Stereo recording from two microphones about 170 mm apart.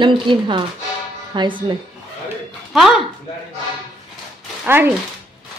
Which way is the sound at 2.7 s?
Centre (ahead or behind).